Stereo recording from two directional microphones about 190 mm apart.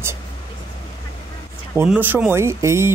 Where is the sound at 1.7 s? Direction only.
10° right (ahead or behind).